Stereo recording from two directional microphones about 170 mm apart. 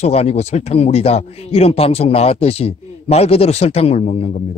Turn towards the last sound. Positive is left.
turn(degrees=35)  # may be behind; listen again after turning